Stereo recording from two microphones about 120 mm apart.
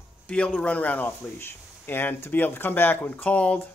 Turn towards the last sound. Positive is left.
turn(degrees=10)  # may be behind; listen again after turning